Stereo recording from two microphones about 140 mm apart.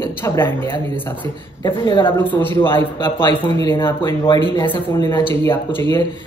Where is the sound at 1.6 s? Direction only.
35° left (ahead or behind).